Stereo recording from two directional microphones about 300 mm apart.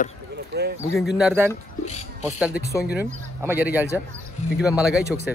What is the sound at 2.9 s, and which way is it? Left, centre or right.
Speech, centre.